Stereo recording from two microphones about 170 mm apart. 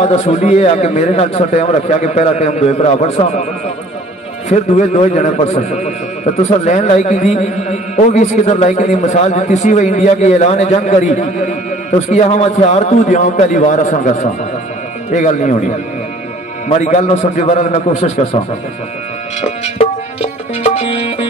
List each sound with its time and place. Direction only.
0.0 s a man's voice: 40° left (ahead or behind)
4.5 s a man's voice: 45° left (ahead or behind)
19.4 s music: 40° left (ahead or behind)